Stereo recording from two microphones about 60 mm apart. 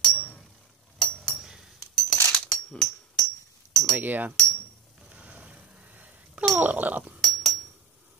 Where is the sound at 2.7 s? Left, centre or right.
Centre.